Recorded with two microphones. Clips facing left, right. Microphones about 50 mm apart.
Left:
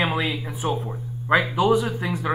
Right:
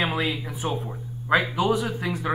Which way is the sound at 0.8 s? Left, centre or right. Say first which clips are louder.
Left 3 dB; centre.